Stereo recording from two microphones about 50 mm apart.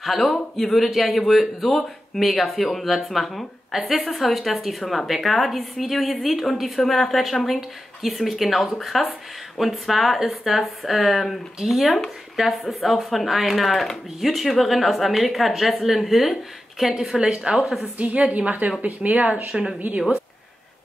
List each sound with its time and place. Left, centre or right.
0.0 s speech: centre
17.5 s a woman's voice: right